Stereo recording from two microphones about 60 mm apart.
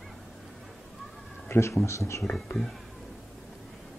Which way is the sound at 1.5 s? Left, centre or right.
Left.